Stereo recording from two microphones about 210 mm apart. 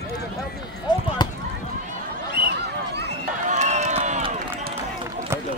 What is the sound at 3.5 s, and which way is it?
Run, 35° right (ahead or behind).